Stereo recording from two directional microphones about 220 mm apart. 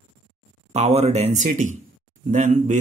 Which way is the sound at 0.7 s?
30° right (ahead or behind).